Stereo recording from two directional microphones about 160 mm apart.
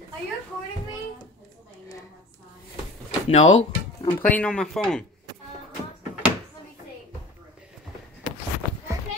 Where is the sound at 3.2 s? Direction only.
45° left (ahead or behind).